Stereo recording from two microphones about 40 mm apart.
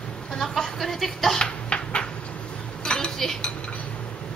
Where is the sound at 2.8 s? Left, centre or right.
Centre.